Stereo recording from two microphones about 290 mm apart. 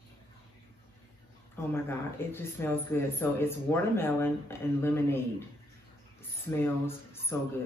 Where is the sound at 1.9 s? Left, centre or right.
Centre.